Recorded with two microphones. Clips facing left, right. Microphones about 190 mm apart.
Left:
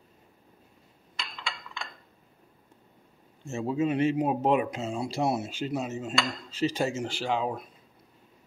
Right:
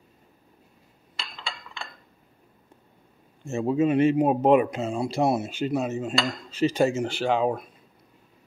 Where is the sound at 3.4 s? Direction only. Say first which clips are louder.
Right 5 dB; 55° right (ahead or behind).